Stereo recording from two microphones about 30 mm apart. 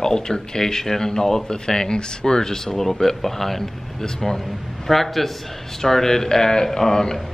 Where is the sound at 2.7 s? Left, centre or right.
Centre.